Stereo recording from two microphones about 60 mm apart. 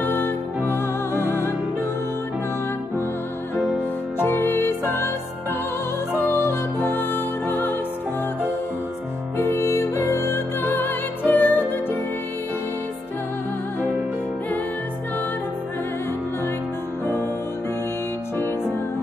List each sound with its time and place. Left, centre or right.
0.0 s music: left
4.2 s music: left
6.3 s music: left
9.4 s music: left